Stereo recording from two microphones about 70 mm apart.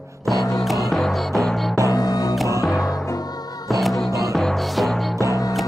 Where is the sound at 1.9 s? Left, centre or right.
Left.